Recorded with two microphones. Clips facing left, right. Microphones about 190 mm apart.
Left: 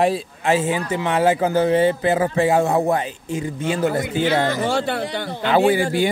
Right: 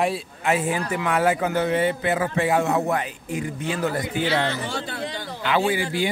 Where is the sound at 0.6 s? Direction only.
25° left (ahead or behind).